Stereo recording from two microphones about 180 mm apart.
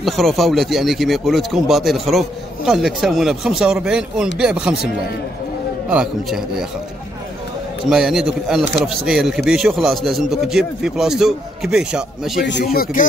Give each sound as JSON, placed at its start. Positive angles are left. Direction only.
{"t": 0.0, "sound": "speech", "side_deg": 0}
{"t": 5.9, "sound": "speech", "side_deg": -5}
{"t": 7.9, "sound": "speech", "side_deg": 0}
{"t": 12.4, "sound": "speech", "side_deg": 65}